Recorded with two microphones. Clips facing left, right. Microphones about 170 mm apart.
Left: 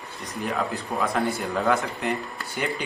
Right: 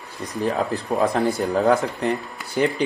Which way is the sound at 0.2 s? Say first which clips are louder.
Right 5 dB; 35° right (ahead or behind).